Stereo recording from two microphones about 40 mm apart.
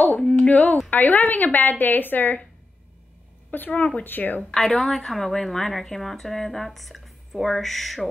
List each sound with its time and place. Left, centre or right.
0.2 s speech: centre
0.5 s speech: left
3.5 s speech: left
4.0 s speech: left
4.6 s a woman's voice: centre